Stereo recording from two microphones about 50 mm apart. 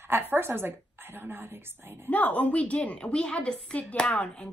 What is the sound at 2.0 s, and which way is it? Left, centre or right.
A woman's voice, left.